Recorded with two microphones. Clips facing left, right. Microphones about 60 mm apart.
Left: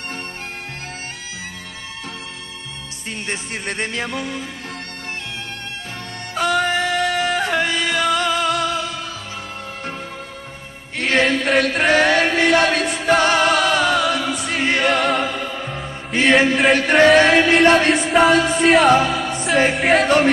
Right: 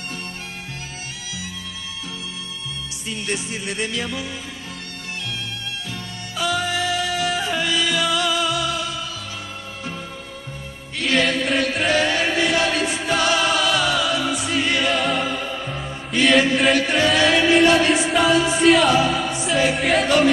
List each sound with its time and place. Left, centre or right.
3.1 s music: left
6.3 s music: left
11.0 s music: left
11.4 s chant: left
16.1 s music: left
16.7 s music: left
18.1 s music: left